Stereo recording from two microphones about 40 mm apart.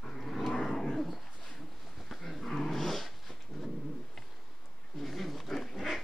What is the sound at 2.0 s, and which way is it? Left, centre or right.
Dog, centre.